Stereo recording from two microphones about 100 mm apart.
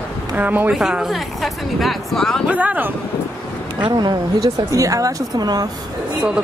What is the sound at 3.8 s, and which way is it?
Speech, 45° right (ahead or behind).